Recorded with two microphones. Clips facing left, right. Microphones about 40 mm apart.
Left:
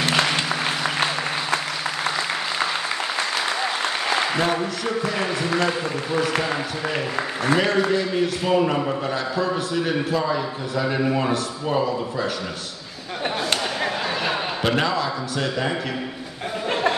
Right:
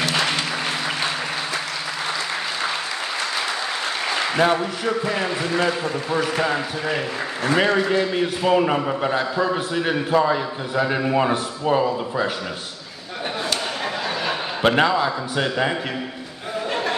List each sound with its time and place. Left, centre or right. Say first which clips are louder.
4.4 s a man's voice: right 3 dB; right
7.5 s a man's voice: right 1 dB; right
14.8 s a man's voice: right 4 dB; right